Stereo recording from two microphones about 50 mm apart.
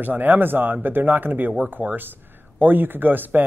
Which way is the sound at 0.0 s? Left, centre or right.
Right.